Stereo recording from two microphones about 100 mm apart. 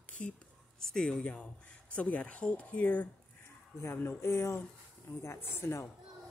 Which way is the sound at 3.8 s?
25° left (ahead or behind).